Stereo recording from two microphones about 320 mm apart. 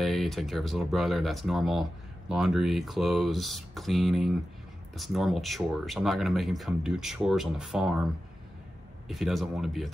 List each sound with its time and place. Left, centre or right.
0.0 s speech: centre
9.0 s speech: centre